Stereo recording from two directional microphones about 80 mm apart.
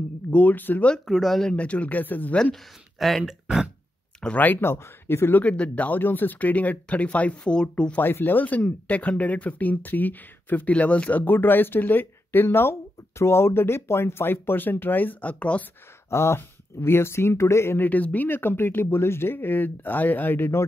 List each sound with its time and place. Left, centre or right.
0.3 s speech: left
0.9 s speech: centre; by 2.3 s left
3.0 s speech: centre
3.4 s speech: centre
4.2 s speech: centre
5.4 s speech: centre
8.0 s speech: left
16.1 s speech: left